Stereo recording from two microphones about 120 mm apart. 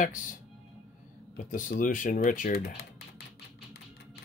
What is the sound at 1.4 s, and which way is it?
Speech, 90° left.